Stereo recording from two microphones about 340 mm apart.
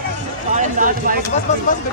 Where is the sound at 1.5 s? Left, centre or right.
Left.